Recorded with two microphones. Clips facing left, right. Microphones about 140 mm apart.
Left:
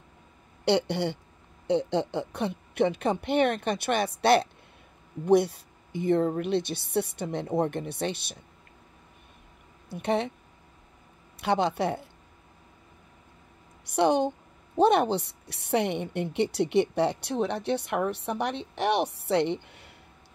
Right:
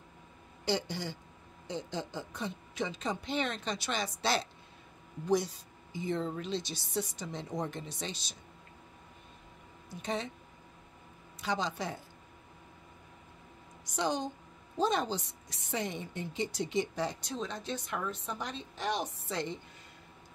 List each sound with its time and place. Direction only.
0.7 s a woman's voice: 65° left (ahead or behind)
9.8 s a woman's voice: 65° left (ahead or behind)
11.4 s a woman's voice: 65° left (ahead or behind)
13.8 s a woman's voice: 60° left (ahead or behind)